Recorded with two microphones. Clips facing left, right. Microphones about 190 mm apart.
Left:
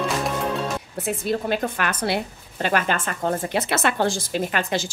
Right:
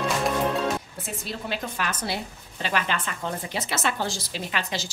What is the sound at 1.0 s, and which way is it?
A woman's voice, 50° left (ahead or behind).